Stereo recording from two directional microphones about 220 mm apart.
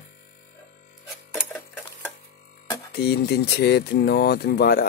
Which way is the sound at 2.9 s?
45° left (ahead or behind).